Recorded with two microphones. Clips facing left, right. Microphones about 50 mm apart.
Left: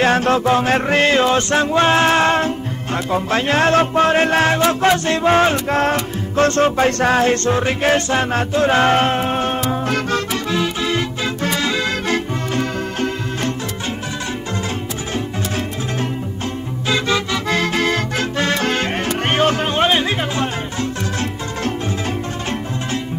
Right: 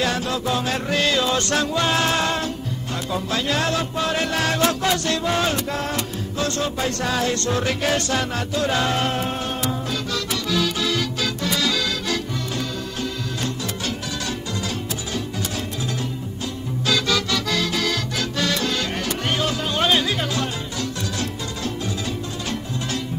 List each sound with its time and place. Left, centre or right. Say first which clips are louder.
0.0 s music: left 8 dB; left
10.5 s music: left 2 dB; left
16.8 s music: left 3 dB; left